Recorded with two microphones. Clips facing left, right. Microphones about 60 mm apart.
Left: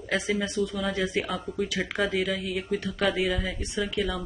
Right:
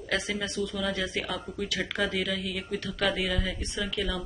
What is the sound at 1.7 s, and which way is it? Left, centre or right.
Speech, centre.